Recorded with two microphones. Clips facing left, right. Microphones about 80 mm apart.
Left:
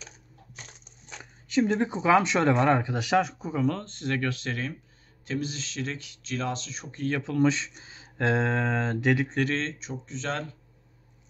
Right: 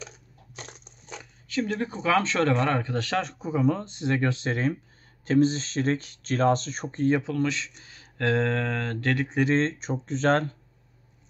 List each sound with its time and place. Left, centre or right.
0.7 s crushing: right
1.5 s speech: left; by 3.6 s centre
3.6 s speech: centre
5.2 s speech: right
7.4 s a man's voice: left
9.5 s speech: right